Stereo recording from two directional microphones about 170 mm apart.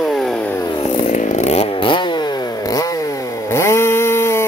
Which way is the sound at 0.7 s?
30° left (ahead or behind).